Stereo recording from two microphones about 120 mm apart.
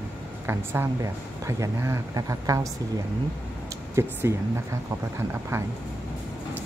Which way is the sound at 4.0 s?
20° right (ahead or behind).